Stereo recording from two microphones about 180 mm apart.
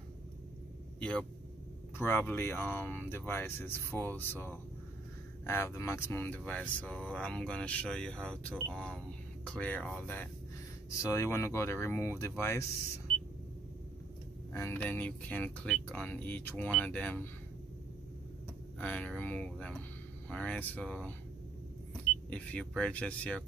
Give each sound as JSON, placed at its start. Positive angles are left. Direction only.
{"t": 0.9, "sound": "speech", "side_deg": 5}
{"t": 5.5, "sound": "speech", "side_deg": 15}
{"t": 14.5, "sound": "speech", "side_deg": 10}
{"t": 18.8, "sound": "speech", "side_deg": 5}
{"t": 22.3, "sound": "speech", "side_deg": 5}